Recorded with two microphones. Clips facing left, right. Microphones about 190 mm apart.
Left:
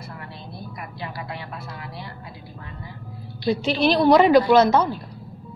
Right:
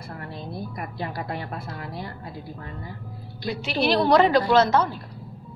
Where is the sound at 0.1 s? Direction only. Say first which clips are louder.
Right 3 dB; 45° right (ahead or behind).